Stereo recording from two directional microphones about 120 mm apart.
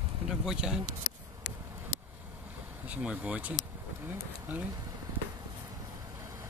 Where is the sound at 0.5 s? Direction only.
5° right (ahead or behind).